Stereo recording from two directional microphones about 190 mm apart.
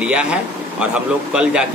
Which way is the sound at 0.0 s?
5° right (ahead or behind).